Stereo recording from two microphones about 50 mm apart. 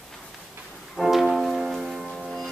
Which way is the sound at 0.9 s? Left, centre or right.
Centre.